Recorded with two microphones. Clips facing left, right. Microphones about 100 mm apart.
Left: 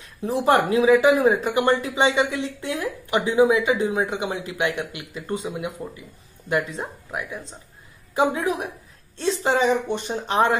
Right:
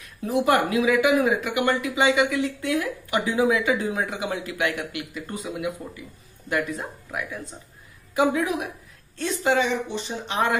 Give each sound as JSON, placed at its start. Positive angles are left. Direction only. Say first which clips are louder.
{"t": 0.0, "sound": "speech", "louder": "left 1 dB", "side_deg": 30}
{"t": 9.8, "sound": "speech", "louder": "left 4 dB", "side_deg": 50}
{"t": 10.3, "sound": "speech", "louder": "left 4 dB", "side_deg": 30}